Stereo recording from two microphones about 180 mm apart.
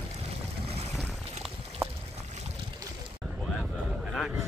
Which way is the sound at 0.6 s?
35° right (ahead or behind).